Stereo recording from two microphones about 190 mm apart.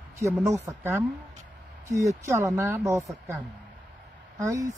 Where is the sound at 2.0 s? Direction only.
15° right (ahead or behind).